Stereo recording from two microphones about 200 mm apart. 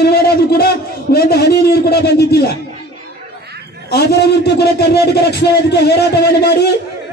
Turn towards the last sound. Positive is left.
turn(degrees=55)  # may be behind; listen again after turning